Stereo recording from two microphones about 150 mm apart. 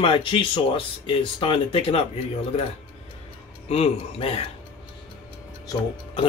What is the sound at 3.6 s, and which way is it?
Speech, 40° left (ahead or behind).